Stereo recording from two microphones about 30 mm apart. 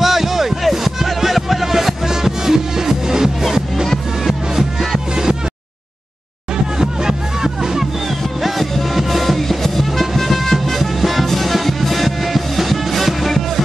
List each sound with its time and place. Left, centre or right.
0.0 s a sound: centre
5.1 s music: right
6.8 s music: right
8.4 s music: centre